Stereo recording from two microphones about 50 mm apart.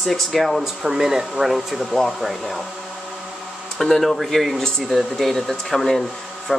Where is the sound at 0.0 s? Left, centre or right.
Centre.